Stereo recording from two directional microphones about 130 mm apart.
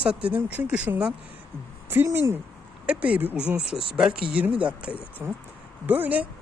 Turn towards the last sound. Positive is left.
turn(degrees=-10)  # may be behind; listen again after turning